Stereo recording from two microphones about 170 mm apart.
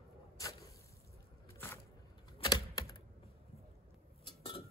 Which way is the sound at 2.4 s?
25° left (ahead or behind).